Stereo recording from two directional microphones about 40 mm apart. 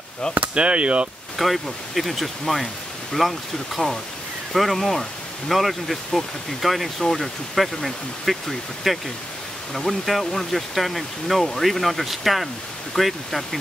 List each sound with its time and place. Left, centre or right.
0.3 s speech: left
0.6 s speech: right
1.4 s speech: centre